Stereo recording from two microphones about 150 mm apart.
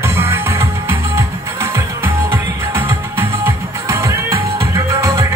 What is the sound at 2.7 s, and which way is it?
Music, 15° right (ahead or behind).